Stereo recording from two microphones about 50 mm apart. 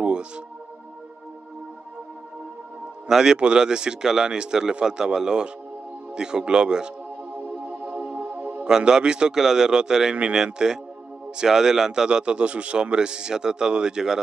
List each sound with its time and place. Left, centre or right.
0.0 s music: right
3.1 s speech: centre
7.3 s music: right
8.0 s music: right
8.3 s music: right
8.6 s speech: centre